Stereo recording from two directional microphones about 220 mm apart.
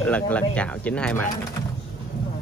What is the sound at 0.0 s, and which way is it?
Speech, 5° left (ahead or behind).